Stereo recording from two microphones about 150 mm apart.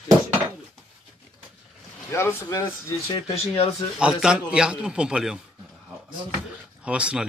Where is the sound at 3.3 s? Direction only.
45° left (ahead or behind).